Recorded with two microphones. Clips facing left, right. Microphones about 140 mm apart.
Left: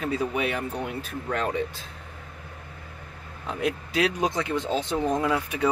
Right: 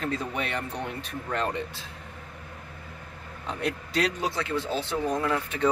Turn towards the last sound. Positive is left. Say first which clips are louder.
# left 2 dB
turn(degrees=10)  # may be behind; listen again after turning